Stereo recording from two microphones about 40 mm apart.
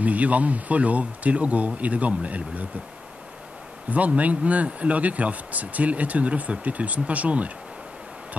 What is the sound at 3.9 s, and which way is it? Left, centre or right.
Speech, right.